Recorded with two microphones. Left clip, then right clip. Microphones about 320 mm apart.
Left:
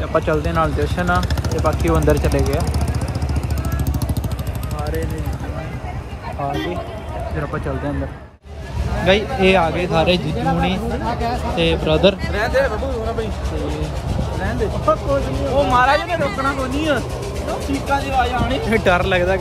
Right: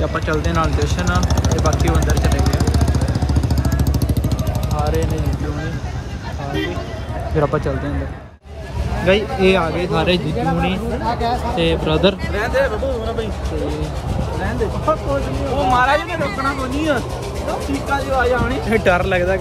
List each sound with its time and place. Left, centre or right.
0.1 s speech: centre
9.0 s speech: centre
14.4 s speech: centre